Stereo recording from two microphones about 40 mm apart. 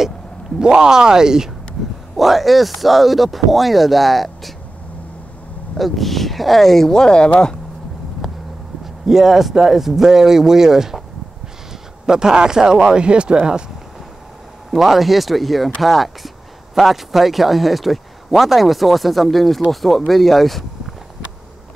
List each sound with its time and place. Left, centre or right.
0.6 s speech: centre
2.1 s speech: centre
5.8 s speech: centre
6.9 s speech: centre
8.2 s a sound: centre
9.0 s speech: centre
12.1 s speech: centre
14.7 s speech: centre